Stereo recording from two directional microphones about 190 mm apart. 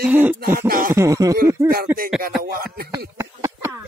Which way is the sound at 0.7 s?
50° right (ahead or behind).